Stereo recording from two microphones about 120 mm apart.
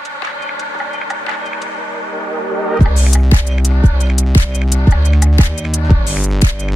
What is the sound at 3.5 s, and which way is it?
Music, centre (ahead or behind).